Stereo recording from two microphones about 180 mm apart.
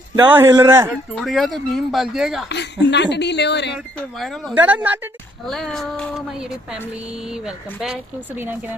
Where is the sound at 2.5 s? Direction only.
75° left (ahead or behind).